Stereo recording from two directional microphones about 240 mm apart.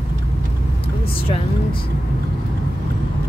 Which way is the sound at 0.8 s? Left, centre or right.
Left.